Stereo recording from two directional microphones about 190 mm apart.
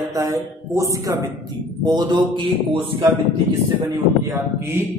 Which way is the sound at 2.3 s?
30° right (ahead or behind).